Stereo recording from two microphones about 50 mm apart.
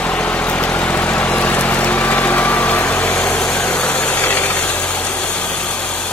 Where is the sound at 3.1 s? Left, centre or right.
Left.